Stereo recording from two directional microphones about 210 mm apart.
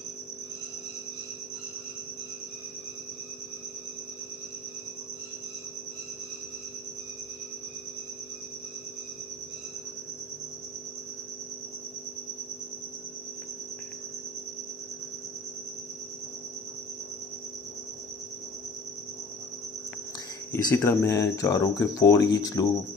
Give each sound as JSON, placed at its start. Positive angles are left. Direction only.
{"t": 20.5, "sound": "speech", "side_deg": 15}